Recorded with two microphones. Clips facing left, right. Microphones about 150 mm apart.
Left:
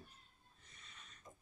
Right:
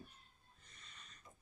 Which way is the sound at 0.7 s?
5° left (ahead or behind).